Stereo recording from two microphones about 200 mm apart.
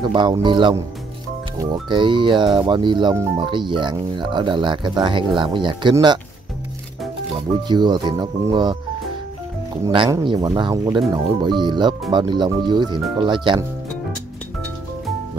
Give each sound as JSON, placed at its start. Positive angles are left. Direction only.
{"t": 0.0, "sound": "speech", "side_deg": -20}
{"t": 7.3, "sound": "speech", "side_deg": -20}
{"t": 9.8, "sound": "speech", "side_deg": -20}